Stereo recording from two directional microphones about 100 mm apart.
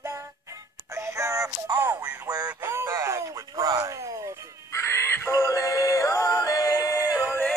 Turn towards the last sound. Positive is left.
turn(degrees=35)  # may be behind; listen again after turning